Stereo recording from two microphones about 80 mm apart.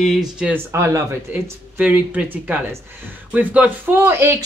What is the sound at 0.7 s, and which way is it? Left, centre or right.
Speech, right.